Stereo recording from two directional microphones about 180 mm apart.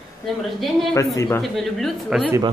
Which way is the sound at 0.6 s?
Centre (ahead or behind).